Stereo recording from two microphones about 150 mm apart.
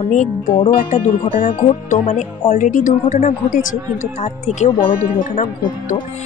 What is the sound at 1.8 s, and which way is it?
Speech, 55° left (ahead or behind).